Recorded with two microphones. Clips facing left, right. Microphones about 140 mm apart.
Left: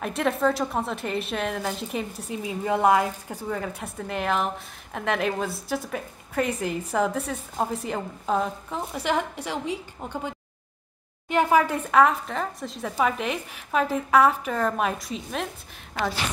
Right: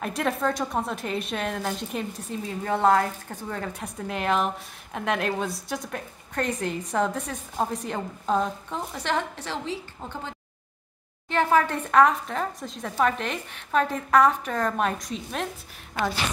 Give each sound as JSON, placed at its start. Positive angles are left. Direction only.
{"t": 0.0, "sound": "a woman's voice", "side_deg": 0}